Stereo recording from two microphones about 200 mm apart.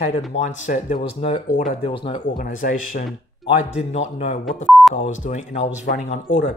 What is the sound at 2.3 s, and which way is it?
Speech, 45° left (ahead or behind).